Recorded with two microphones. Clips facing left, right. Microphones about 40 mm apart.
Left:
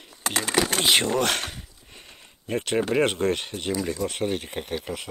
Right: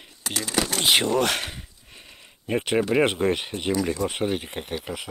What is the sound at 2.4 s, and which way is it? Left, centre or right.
Speech, centre.